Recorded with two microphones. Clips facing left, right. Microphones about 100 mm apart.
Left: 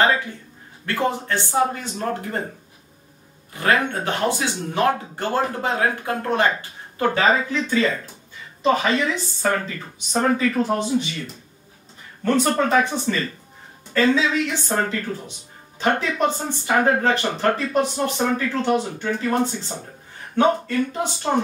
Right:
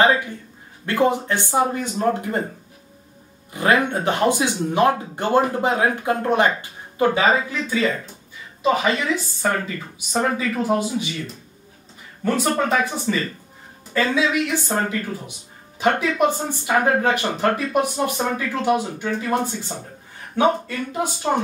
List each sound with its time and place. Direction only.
0.8 s speech: 15° right (ahead or behind)
3.5 s speech: 15° right (ahead or behind)
12.2 s speech: 5° right (ahead or behind)
20.3 s speech: 10° right (ahead or behind)